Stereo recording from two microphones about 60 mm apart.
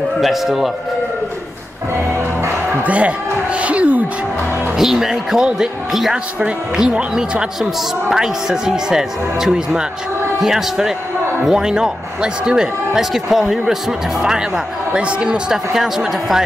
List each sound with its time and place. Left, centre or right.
0.2 s speech: centre
2.8 s speech: right
4.7 s speech: centre
6.4 s speech: centre